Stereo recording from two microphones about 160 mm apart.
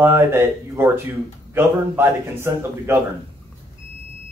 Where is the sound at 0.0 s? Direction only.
15° right (ahead or behind).